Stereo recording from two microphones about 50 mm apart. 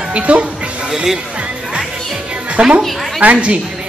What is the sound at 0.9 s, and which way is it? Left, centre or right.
Speech, centre.